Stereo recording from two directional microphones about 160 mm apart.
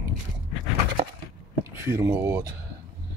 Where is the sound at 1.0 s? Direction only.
35° right (ahead or behind).